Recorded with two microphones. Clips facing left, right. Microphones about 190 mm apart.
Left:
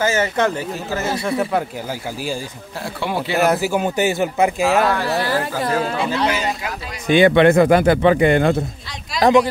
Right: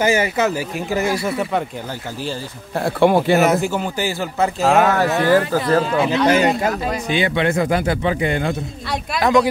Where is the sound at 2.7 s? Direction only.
55° right (ahead or behind).